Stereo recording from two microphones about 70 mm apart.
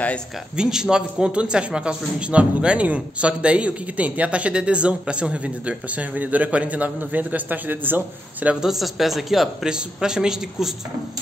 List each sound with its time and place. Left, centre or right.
0.6 s a man's voice: centre; by 8.5 s right
8.5 s speech: centre